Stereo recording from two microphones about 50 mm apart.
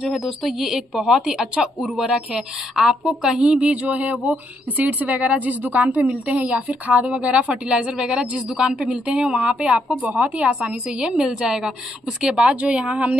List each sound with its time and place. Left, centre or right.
0.1 s a woman's voice: centre
3.7 s a woman's voice: right
11.2 s a woman's voice: centre